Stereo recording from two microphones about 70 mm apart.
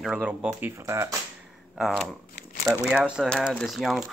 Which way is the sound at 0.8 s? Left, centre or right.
Right.